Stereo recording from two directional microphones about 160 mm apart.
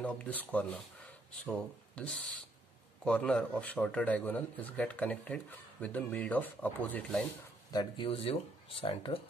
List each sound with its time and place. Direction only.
0.0 s a man's voice: 10° left (ahead or behind)
2.0 s a man's voice: 5° left (ahead or behind)
7.7 s speech: 25° left (ahead or behind)
8.1 s speech: 35° left (ahead or behind)